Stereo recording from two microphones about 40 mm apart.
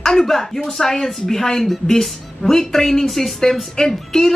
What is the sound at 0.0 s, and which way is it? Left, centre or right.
A woman's voice, centre.